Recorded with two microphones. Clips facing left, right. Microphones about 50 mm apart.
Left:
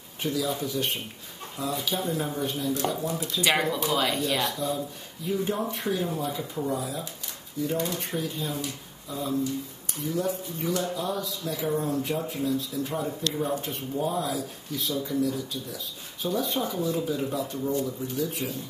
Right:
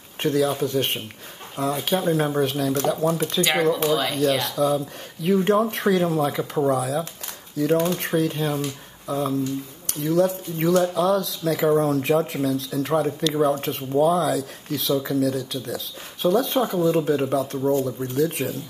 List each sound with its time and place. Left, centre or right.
0.2 s speech: right
3.9 s speech: centre
4.5 s speech: right
7.7 s speech: right
8.0 s speech: right